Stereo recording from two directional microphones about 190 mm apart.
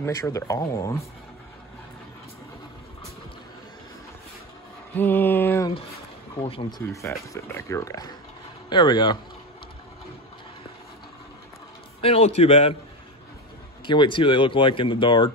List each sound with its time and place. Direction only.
0.0 s speech: 15° left (ahead or behind)
4.9 s mantra: 10° left (ahead or behind)
6.4 s speech: 30° left (ahead or behind)
6.9 s speech: 15° left (ahead or behind)
12.0 s a man's voice: 30° left (ahead or behind)
13.8 s speech: 25° left (ahead or behind)